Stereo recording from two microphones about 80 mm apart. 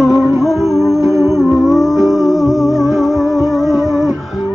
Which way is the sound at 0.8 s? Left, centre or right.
Left.